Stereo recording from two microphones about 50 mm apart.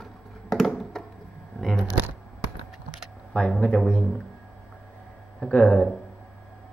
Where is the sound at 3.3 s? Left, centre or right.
Centre.